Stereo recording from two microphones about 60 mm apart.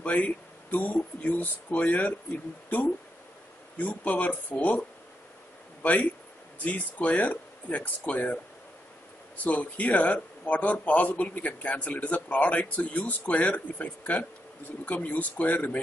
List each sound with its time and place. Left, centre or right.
0.0 s speech: left
3.7 s speech: left
9.4 s speech: left